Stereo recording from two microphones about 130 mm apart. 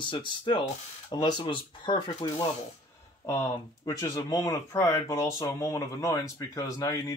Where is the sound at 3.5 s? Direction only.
30° left (ahead or behind).